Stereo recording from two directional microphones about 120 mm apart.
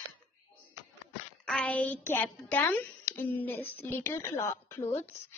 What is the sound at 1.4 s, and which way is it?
A child's voice, 10° left (ahead or behind).